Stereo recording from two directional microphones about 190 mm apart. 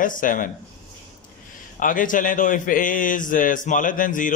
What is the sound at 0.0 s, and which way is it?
Speech, 45° left (ahead or behind).